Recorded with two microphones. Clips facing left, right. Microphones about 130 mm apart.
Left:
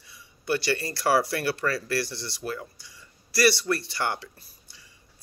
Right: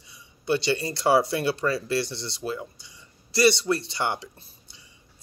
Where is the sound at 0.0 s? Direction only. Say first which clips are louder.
Right 2 dB; 20° right (ahead or behind).